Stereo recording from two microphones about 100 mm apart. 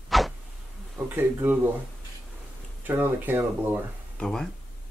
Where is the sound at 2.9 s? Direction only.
20° right (ahead or behind).